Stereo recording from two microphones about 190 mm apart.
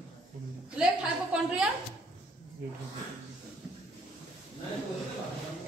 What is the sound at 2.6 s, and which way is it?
Speech, 55° right (ahead or behind).